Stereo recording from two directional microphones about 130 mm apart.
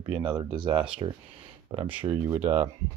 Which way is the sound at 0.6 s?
35° right (ahead or behind).